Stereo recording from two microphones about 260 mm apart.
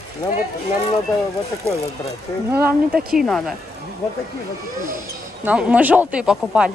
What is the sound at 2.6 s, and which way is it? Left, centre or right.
Speech, centre.